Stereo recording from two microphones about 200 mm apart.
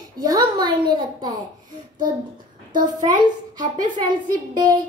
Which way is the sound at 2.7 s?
20° right (ahead or behind).